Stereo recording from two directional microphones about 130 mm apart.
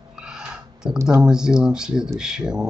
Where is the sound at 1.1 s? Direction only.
5° right (ahead or behind).